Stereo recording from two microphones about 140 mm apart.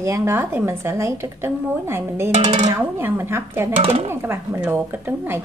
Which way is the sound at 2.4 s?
35° right (ahead or behind).